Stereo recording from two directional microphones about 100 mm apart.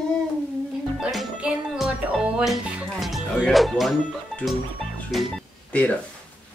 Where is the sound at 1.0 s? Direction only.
Centre (ahead or behind).